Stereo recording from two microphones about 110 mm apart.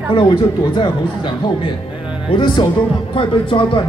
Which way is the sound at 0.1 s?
45° left (ahead or behind).